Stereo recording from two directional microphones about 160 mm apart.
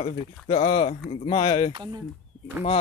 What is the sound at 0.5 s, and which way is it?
Speech, 45° left (ahead or behind).